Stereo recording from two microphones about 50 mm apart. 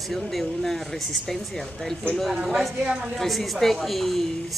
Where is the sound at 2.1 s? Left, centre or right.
Centre.